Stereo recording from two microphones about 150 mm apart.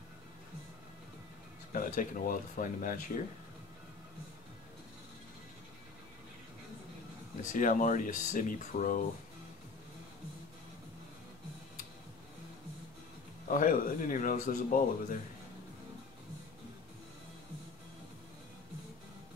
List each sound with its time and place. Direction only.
1.7 s speech: 60° left (ahead or behind)
7.5 s speech: 60° left (ahead or behind)
13.5 s speech: 65° left (ahead or behind)